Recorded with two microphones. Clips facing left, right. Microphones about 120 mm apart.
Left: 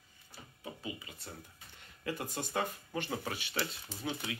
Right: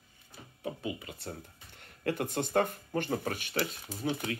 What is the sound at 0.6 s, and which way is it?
Speech, 55° right (ahead or behind).